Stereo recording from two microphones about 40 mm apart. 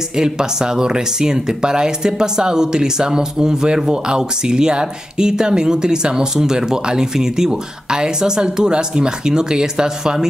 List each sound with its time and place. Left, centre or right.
0.1 s speech: centre